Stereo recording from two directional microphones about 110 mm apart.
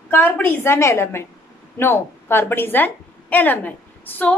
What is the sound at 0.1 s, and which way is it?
A woman's voice, 20° left (ahead or behind).